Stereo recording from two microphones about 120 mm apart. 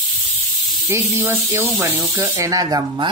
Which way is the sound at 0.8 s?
20° right (ahead or behind).